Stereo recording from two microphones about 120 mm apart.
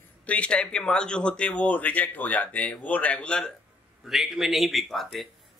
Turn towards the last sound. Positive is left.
turn(degrees=0)  # may be behind; listen again after turning